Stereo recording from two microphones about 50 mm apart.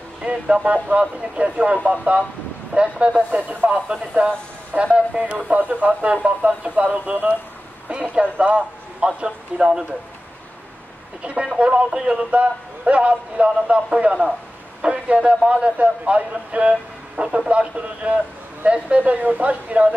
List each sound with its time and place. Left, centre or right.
0.2 s a man's voice: right
4.9 s a man's voice: right
11.5 s a man's voice: right